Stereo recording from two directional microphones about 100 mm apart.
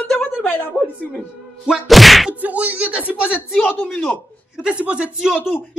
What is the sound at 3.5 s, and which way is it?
Speech, 20° left (ahead or behind).